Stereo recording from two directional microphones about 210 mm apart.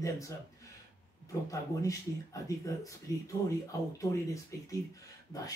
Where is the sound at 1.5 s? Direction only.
15° left (ahead or behind).